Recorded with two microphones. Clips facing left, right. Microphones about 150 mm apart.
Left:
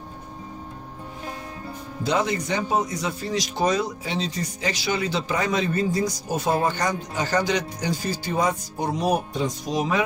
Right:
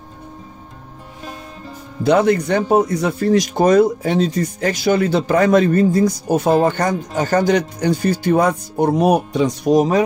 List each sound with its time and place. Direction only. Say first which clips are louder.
2.0 s speech: right 10 dB; 60° right (ahead or behind); by 9.6 s 75° right (ahead or behind)
9.7 s speech: right 10 dB; 45° right (ahead or behind)